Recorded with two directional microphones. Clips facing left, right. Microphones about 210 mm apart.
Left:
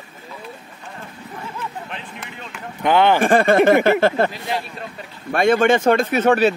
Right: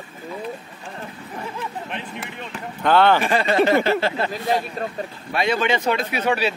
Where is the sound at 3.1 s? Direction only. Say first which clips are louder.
Left 5 dB; 50° left (ahead or behind).